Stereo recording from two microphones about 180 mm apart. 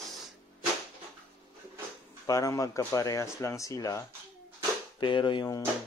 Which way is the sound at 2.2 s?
20° left (ahead or behind).